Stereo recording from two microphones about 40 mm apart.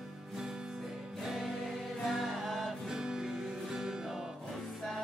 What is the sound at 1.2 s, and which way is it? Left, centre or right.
Music, centre.